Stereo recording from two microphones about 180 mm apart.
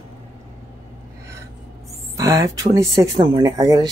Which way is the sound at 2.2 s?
20° right (ahead or behind).